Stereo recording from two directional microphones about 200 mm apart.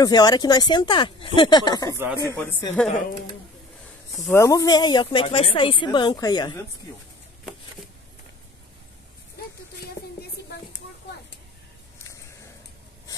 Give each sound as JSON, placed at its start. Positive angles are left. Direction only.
{"t": 0.0, "sound": "speech", "side_deg": 20}
{"t": 2.3, "sound": "speech", "side_deg": 10}
{"t": 4.3, "sound": "speech", "side_deg": 15}